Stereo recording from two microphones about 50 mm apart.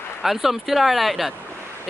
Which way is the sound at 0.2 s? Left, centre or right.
Centre.